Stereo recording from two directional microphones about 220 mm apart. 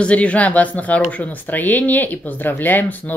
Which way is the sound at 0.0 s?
5° left (ahead or behind).